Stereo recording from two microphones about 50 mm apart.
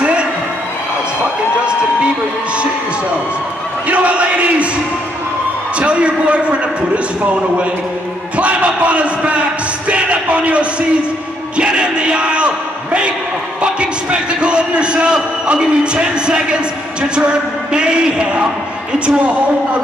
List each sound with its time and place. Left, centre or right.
0.0 s a sound: right
3.9 s a man's voice: right
5.8 s a man's voice: right
8.4 s a man's voice: right